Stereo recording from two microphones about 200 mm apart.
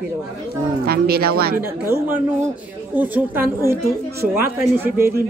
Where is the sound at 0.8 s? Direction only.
50° right (ahead or behind).